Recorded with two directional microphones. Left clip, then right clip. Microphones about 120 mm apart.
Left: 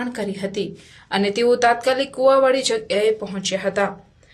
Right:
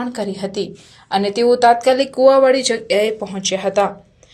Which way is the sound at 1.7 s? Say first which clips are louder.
Right 5 dB; 30° right (ahead or behind).